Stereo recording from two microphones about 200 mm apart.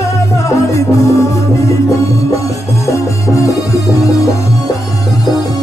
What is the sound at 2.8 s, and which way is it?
Music, 15° left (ahead or behind).